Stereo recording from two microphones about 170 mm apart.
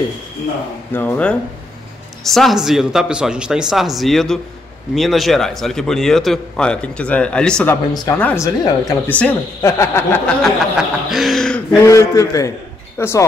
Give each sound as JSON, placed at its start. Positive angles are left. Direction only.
{"t": 0.9, "sound": "a man's voice", "side_deg": 10}
{"t": 7.9, "sound": "speech", "side_deg": 25}
{"t": 8.2, "sound": "a man's voice", "side_deg": 10}
{"t": 9.1, "sound": "a man's voice", "side_deg": 10}
{"t": 10.4, "sound": "speech", "side_deg": 0}
{"t": 11.7, "sound": "a man's voice", "side_deg": 15}